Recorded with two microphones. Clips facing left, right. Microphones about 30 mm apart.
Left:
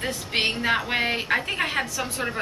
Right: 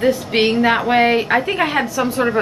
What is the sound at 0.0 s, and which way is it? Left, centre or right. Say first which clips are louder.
A woman's voice: right 9 dB; centre.